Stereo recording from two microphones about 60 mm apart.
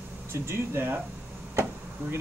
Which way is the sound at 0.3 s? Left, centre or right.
Right.